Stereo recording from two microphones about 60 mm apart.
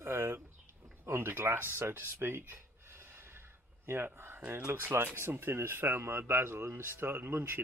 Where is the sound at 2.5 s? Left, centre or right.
Right.